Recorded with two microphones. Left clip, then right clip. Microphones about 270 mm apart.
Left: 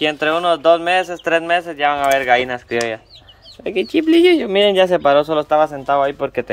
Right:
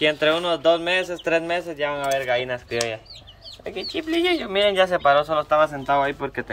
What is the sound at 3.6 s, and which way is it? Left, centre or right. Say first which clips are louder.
Speech: left 11 dB; left.